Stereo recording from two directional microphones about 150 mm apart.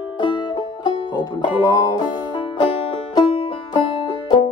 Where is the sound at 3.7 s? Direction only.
30° left (ahead or behind).